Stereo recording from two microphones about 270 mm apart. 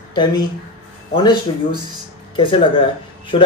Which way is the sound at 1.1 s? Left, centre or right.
Centre.